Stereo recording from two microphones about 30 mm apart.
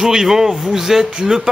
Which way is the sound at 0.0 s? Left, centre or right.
Centre.